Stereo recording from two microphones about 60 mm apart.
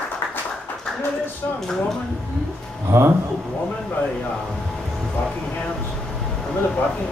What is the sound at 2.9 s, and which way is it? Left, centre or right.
Speech, right.